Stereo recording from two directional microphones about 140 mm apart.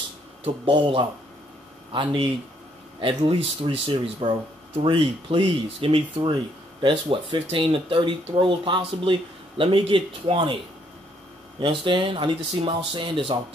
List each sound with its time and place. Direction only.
0.4 s speech: 40° right (ahead or behind)
11.6 s speech: 35° right (ahead or behind)